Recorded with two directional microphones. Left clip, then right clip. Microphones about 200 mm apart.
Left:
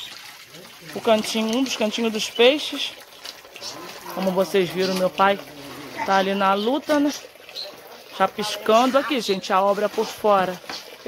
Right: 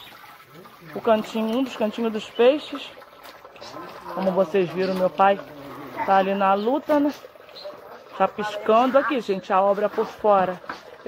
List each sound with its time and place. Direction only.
1.0 s speech: 25° left (ahead or behind)
4.5 s speech: 25° left (ahead or behind)
8.2 s speech: 20° left (ahead or behind)